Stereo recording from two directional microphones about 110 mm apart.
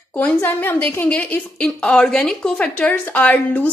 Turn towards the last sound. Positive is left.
turn(degrees=15)  # may be behind; listen again after turning